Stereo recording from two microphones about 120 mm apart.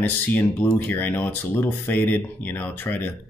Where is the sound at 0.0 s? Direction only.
15° left (ahead or behind).